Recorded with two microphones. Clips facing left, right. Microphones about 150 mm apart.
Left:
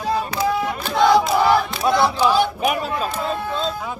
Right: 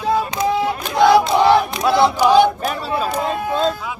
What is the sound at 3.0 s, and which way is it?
Speech, 40° right (ahead or behind).